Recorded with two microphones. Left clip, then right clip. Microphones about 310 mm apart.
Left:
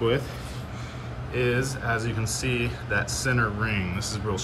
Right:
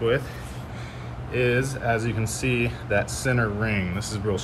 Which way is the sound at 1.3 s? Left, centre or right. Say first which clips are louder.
Right 3 dB; centre.